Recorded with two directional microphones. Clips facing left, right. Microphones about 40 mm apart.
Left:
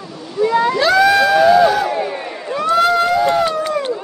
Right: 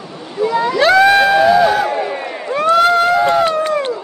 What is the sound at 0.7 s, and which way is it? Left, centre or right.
Crowd, right.